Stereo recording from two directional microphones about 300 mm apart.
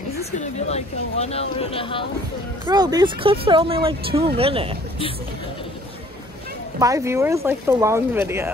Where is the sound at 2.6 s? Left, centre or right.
Centre.